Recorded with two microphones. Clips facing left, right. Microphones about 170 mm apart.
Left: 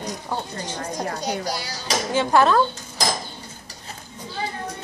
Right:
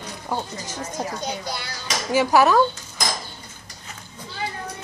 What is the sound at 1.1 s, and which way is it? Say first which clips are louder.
Speech: left 3 dB; 35° left (ahead or behind).